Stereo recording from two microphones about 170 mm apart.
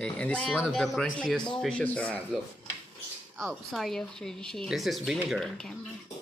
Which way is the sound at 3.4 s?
Centre (ahead or behind).